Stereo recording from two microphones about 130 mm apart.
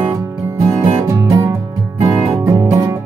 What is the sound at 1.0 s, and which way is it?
Music, 20° right (ahead or behind).